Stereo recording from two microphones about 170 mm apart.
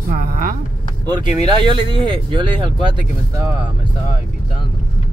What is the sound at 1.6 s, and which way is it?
Speech, 30° right (ahead or behind).